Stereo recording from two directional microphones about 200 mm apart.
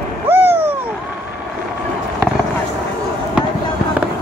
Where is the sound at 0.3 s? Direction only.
10° right (ahead or behind).